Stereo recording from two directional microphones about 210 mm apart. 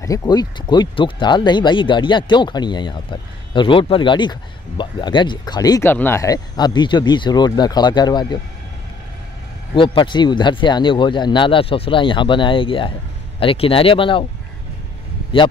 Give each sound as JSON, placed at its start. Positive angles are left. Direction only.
{"t": 0.0, "sound": "speech", "side_deg": 15}
{"t": 9.8, "sound": "speech", "side_deg": 20}